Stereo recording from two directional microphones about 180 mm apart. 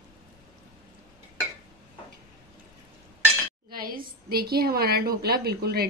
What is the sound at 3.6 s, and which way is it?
A woman's voice, 55° right (ahead or behind).